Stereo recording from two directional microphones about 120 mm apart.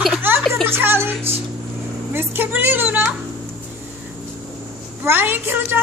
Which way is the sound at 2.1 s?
15° right (ahead or behind).